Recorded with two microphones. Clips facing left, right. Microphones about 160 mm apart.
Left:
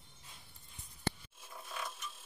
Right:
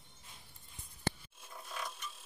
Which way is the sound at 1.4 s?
Centre (ahead or behind).